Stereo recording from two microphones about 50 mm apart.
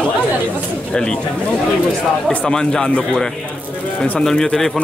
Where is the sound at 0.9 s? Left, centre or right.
Centre.